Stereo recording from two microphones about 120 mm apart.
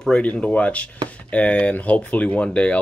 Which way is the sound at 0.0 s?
10° left (ahead or behind).